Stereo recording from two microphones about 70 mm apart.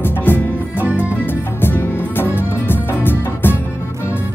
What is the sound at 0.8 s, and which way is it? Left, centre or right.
Music, right.